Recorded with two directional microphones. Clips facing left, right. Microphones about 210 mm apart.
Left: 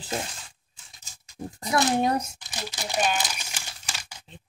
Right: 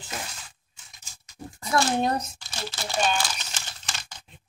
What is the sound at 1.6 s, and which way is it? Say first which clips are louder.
Speech: left 1 dB; 20° left (ahead or behind).